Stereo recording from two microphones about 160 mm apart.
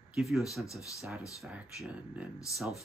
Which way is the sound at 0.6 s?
20° left (ahead or behind).